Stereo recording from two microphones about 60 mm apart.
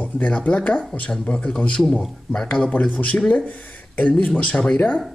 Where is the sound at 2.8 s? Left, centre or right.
Left.